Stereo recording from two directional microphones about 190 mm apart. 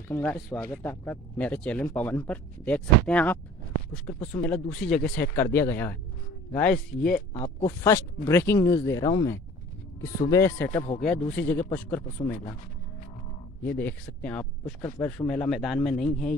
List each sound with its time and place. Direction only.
0.1 s speech: 10° left (ahead or behind)
12.2 s speech: 25° left (ahead or behind)
13.6 s speech: 10° left (ahead or behind)